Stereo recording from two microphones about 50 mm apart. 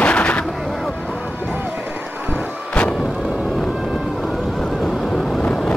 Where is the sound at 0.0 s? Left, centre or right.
Left.